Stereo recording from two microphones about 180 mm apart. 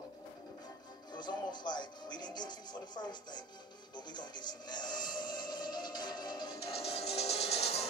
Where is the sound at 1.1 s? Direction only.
25° left (ahead or behind).